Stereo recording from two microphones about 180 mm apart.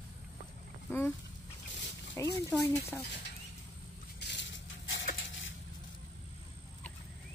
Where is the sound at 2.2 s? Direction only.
15° left (ahead or behind).